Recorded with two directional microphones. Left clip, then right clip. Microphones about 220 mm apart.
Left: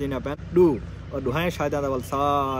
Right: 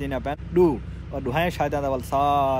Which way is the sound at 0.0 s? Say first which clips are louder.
Right 1 dB; 5° left (ahead or behind).